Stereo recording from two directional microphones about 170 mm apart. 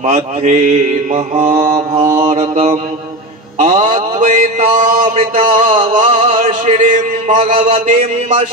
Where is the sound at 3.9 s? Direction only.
50° right (ahead or behind).